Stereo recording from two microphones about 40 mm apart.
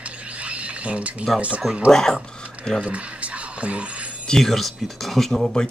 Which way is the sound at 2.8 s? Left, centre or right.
Right.